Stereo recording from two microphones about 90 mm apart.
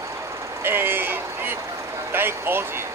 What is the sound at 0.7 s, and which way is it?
Speech, 25° right (ahead or behind).